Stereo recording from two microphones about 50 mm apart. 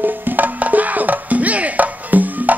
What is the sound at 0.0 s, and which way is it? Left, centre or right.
Music, right.